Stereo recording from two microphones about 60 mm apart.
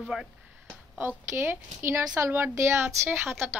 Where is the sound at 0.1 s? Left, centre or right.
Centre.